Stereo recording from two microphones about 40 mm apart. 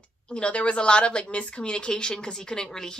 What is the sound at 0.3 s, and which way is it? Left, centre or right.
Speech, left.